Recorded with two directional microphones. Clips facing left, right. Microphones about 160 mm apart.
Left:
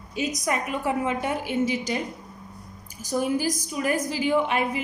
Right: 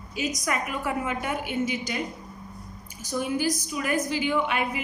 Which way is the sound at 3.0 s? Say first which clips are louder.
Left 2 dB; 40° left (ahead or behind).